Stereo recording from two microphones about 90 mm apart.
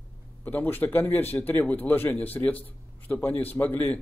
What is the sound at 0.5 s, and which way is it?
Speech, 20° left (ahead or behind).